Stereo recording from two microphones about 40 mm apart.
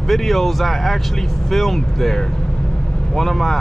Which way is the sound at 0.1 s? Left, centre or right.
Centre.